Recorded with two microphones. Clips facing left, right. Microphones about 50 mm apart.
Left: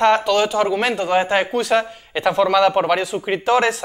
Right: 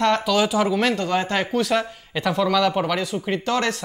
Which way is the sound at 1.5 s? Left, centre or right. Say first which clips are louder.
Left 3 dB; centre.